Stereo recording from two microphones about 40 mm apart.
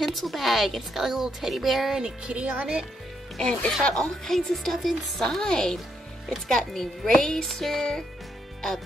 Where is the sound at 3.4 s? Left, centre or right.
Left.